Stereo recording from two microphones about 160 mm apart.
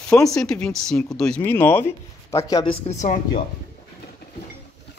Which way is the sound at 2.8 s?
45° left (ahead or behind).